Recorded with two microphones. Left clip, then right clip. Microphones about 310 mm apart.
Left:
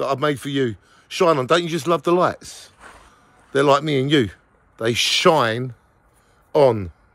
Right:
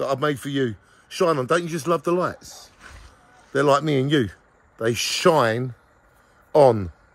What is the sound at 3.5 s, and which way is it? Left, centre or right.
Speech, centre.